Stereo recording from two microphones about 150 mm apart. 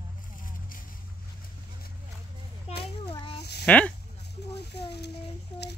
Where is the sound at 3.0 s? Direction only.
30° left (ahead or behind).